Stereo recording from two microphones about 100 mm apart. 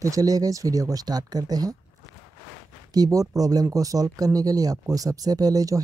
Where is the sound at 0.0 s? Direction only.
35° right (ahead or behind).